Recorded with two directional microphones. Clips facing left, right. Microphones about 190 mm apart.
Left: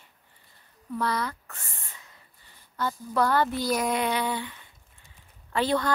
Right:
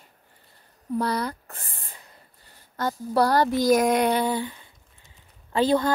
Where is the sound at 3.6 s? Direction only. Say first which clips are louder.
Right 7 dB; 45° right (ahead or behind).